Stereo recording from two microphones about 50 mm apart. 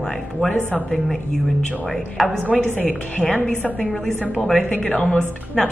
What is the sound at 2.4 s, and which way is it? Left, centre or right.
Speech, left.